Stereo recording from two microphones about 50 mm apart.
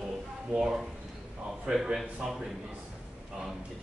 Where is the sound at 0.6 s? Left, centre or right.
Centre.